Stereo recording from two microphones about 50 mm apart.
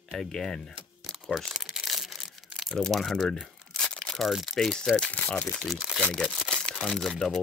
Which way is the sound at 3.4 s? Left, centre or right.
Centre.